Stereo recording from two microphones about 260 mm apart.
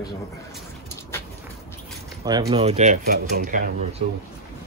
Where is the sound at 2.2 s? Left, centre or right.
Centre; by 3.6 s right.